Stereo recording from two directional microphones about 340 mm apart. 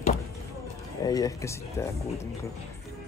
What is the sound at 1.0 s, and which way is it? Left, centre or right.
Speech, centre.